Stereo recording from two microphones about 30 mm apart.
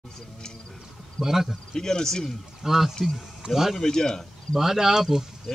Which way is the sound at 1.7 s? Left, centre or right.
Left.